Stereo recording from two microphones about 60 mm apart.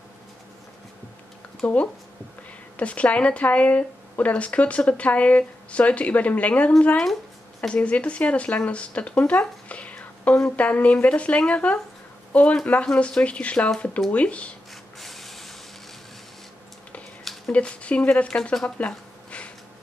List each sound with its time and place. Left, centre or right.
1.6 s speech: left
15.0 s printer: centre
17.5 s speech: left
18.3 s speech: centre
18.8 s a sound: left